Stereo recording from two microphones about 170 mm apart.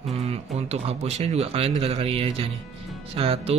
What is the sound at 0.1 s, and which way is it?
Speech, 35° right (ahead or behind).